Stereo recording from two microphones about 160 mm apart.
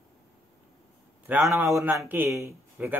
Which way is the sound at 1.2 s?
15° right (ahead or behind).